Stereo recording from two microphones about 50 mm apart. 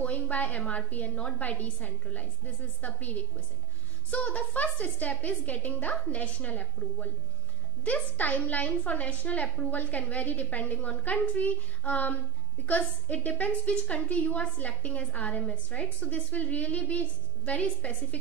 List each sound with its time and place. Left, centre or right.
0.0 s a woman's voice: left
4.1 s a woman's voice: left